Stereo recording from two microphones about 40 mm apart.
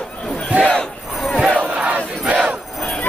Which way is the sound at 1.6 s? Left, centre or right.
Right.